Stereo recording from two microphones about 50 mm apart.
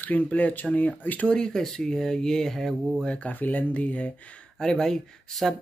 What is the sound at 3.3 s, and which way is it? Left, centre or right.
Speech, left.